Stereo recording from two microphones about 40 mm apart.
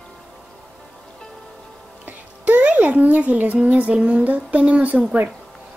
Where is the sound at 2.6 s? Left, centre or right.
Right.